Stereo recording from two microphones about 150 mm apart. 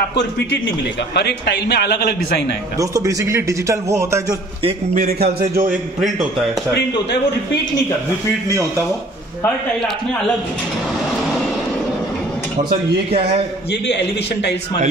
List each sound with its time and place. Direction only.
1.1 s a man's voice: 90° left
2.8 s a man's voice: 20° right (ahead or behind)
4.9 s a man's voice: 85° right
5.7 s a man's voice: centre (ahead or behind)
8.5 s a man's voice: 20° right (ahead or behind)